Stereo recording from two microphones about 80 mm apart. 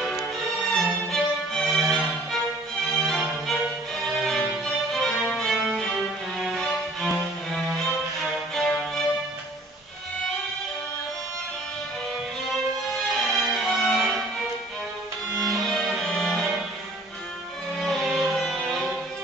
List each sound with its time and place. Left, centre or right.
0.7 s music: centre
13.1 s music: centre
15.4 s music: centre
17.7 s music: centre